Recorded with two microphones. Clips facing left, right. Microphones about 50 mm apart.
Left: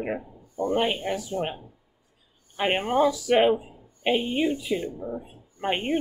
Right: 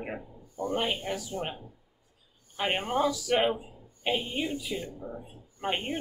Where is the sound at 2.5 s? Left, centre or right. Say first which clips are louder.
Left 5 dB; left.